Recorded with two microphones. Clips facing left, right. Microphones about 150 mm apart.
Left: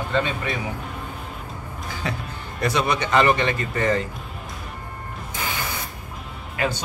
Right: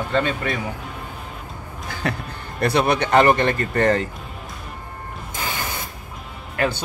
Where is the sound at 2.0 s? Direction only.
60° right (ahead or behind).